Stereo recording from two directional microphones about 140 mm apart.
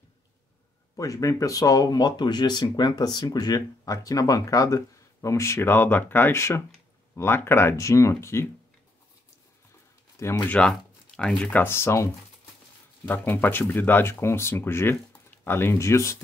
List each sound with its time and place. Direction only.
0.9 s speech: 25° left (ahead or behind)
10.1 s speech: 20° left (ahead or behind)
10.5 s speech: 5° left (ahead or behind)